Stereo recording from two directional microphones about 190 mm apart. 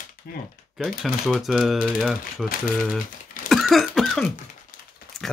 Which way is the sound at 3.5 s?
Centre (ahead or behind).